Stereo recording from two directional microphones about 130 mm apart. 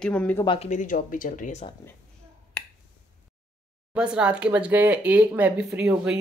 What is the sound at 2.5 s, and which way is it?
Finger snapping, 10° left (ahead or behind).